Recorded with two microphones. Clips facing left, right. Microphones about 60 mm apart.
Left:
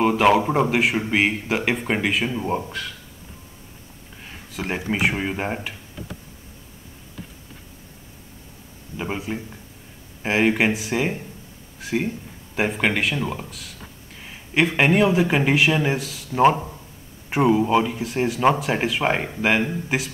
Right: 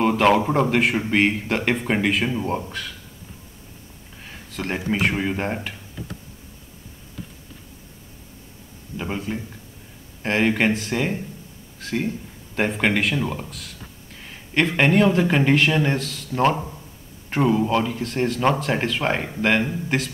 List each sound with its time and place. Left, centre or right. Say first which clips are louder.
0.0 s a man's voice: even; centre
4.5 s a sound: even; centre
4.7 s speech: right 1 dB; centre
5.0 s a man's voice: left 1 dB; centre
8.9 s a man's voice: even; centre
17.3 s speech: left 2 dB; centre